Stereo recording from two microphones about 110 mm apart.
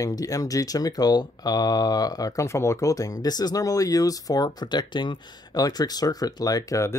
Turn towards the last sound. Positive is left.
turn(degrees=30)  # may be behind; listen again after turning